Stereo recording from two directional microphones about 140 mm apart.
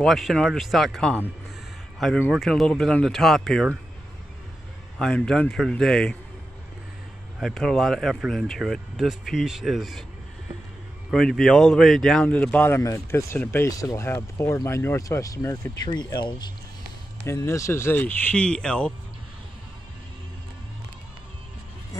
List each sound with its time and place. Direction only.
0.0 s speech: centre (ahead or behind)
4.9 s speech: 5° left (ahead or behind)
7.3 s speech: centre (ahead or behind)
11.1 s a man's voice: 5° left (ahead or behind); by 16.4 s 30° left (ahead or behind)
17.3 s a man's voice: 20° left (ahead or behind)